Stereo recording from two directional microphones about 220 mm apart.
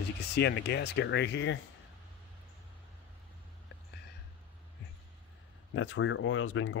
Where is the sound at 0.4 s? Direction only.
50° left (ahead or behind).